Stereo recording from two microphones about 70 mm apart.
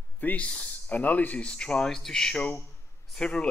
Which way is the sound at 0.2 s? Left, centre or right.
Left.